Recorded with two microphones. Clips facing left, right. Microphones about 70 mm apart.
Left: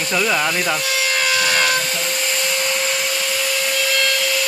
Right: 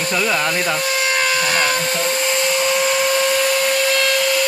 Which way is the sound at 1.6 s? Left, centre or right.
Right.